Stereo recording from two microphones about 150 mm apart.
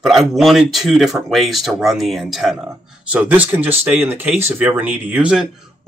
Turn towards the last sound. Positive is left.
turn(degrees=-5)  # may be behind; listen again after turning